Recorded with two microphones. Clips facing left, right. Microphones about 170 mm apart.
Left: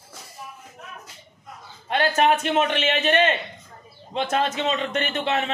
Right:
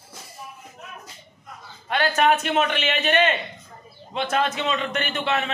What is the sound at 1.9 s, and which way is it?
A man's voice, 30° left (ahead or behind).